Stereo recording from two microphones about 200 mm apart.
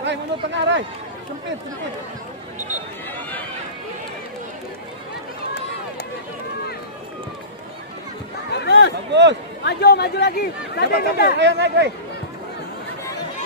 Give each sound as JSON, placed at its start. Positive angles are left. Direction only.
{"t": 0.0, "sound": "speech", "side_deg": -60}
{"t": 8.5, "sound": "a sound", "side_deg": 55}
{"t": 9.1, "sound": "speech", "side_deg": -60}
{"t": 9.7, "sound": "speech", "side_deg": 55}
{"t": 11.3, "sound": "speech", "side_deg": -60}